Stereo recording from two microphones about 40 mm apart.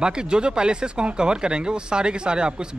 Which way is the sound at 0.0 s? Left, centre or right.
Right.